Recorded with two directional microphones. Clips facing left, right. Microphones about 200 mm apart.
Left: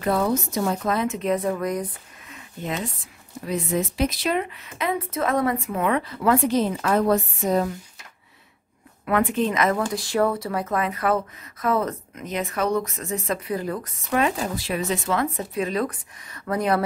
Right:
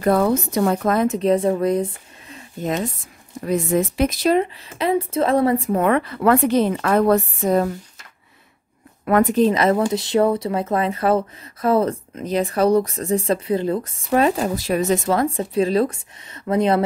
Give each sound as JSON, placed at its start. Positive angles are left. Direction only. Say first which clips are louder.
{"t": 0.0, "sound": "a woman's voice", "louder": "right 5 dB", "side_deg": -55}
{"t": 1.0, "sound": "speech", "louder": "right 6 dB", "side_deg": -35}
{"t": 5.9, "sound": "a woman's voice", "louder": "right 3 dB", "side_deg": -60}
{"t": 9.0, "sound": "speech", "louder": "right 6 dB", "side_deg": -40}